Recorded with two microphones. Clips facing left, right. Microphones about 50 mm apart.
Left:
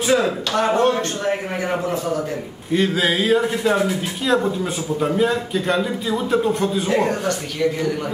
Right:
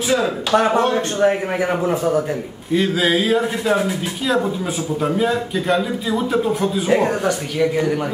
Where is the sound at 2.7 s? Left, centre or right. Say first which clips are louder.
Right 1 dB; centre.